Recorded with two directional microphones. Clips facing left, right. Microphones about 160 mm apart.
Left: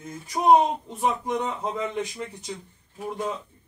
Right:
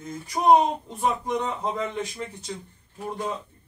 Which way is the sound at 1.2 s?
10° left (ahead or behind).